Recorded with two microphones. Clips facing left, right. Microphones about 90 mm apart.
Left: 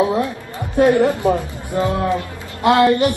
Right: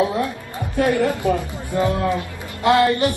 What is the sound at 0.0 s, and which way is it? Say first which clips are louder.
Chatter: left 3 dB; 25° left (ahead or behind).